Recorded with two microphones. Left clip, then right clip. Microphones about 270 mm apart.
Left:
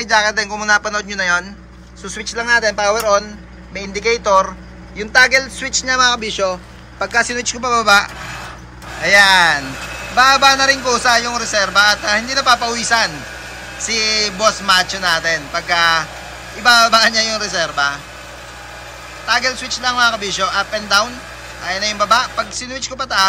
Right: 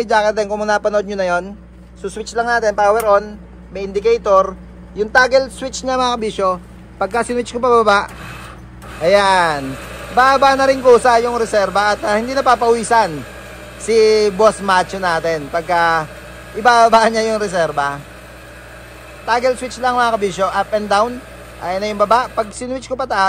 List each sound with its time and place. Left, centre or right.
0.0 s a man's voice: centre; by 17.9 s right
19.2 s a man's voice: right